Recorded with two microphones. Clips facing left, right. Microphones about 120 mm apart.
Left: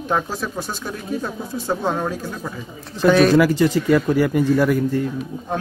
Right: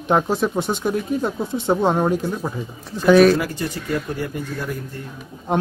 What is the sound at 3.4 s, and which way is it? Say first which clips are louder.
Speech: left 10 dB; 90° left.